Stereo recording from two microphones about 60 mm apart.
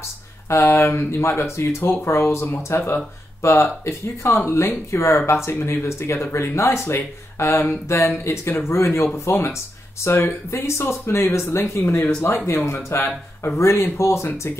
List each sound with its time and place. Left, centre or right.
0.5 s speech: left
7.3 s a sound: left
7.6 s speech: left
12.4 s speech: left